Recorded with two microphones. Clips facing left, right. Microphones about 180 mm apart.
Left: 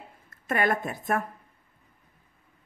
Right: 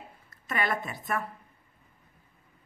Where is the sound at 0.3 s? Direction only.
50° left (ahead or behind).